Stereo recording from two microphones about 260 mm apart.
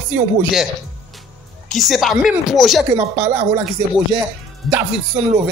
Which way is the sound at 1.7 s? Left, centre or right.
Centre.